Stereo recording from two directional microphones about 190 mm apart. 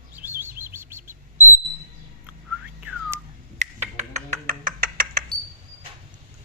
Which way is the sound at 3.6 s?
40° right (ahead or behind).